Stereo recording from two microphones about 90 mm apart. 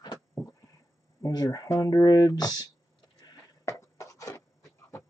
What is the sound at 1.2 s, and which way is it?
Speech, 45° left (ahead or behind).